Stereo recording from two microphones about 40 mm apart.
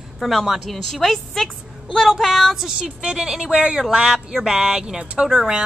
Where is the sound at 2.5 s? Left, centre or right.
Centre.